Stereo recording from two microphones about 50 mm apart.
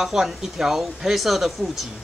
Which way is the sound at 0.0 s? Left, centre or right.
Centre.